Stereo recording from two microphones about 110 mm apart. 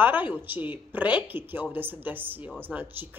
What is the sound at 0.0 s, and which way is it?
Speech, 15° right (ahead or behind).